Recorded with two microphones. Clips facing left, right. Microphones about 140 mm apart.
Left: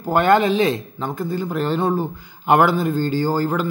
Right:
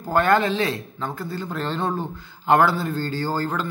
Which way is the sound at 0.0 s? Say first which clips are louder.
Left 3 dB; 20° left (ahead or behind).